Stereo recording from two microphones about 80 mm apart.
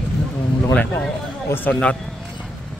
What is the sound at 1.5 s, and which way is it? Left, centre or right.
Speech, left.